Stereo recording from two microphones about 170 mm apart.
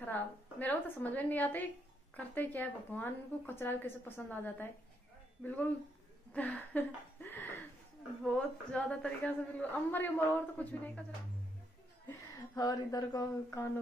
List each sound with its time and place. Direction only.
0.0 s a woman's voice: 10° left (ahead or behind)
12.5 s speech: 20° left (ahead or behind)